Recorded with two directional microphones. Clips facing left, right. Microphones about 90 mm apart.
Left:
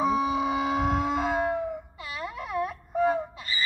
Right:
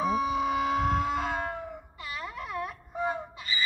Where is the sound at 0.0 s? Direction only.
Centre (ahead or behind).